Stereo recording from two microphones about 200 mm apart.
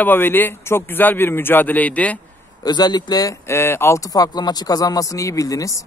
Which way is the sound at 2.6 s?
20° left (ahead or behind).